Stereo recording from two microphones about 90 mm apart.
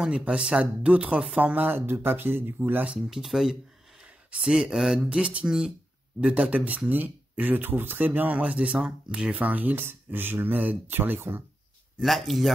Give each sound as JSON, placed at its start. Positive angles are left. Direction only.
{"t": 0.0, "sound": "speech", "side_deg": -10}
{"t": 3.1, "sound": "speech", "side_deg": -5}
{"t": 12.0, "sound": "speech", "side_deg": 0}